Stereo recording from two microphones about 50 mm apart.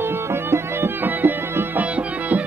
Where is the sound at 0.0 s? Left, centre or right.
Right.